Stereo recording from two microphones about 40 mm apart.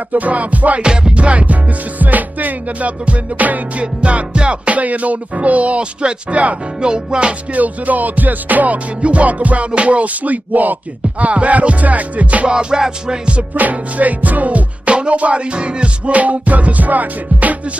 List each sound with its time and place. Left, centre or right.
0.1 s rapping: right
3.8 s rapping: right
6.8 s music: right
7.5 s music: right
9.0 s rapping: right
12.4 s music: centre
13.6 s rapping: right